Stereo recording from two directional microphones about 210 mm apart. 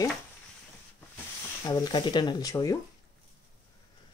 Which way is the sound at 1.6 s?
20° left (ahead or behind).